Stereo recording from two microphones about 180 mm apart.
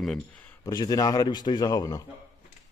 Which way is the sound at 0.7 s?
20° left (ahead or behind).